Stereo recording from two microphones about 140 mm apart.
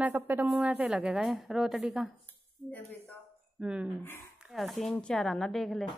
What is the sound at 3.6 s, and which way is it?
A woman's voice, 5° right (ahead or behind).